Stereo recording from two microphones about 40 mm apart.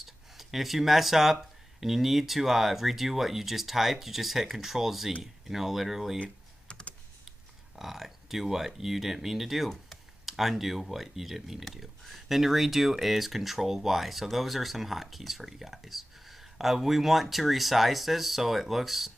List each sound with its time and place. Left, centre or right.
0.0 s speech: centre
6.1 s computer keyboard: left
7.7 s speech: centre